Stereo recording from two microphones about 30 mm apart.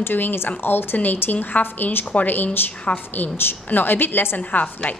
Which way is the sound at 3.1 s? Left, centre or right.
Left.